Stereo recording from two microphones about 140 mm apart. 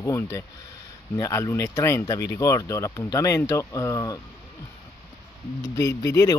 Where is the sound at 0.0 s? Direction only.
20° left (ahead or behind).